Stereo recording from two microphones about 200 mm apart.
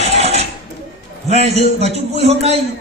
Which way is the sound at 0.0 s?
35° right (ahead or behind).